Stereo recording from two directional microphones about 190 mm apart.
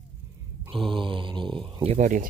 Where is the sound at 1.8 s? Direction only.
40° right (ahead or behind).